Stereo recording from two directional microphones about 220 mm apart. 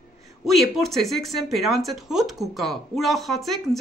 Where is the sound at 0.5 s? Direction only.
Centre (ahead or behind).